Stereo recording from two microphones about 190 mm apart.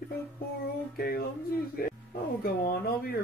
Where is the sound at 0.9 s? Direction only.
55° left (ahead or behind).